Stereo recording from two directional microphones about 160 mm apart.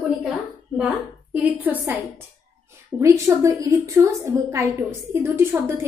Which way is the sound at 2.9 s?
20° right (ahead or behind).